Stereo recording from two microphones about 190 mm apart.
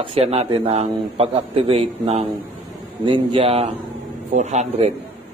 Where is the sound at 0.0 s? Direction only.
30° right (ahead or behind).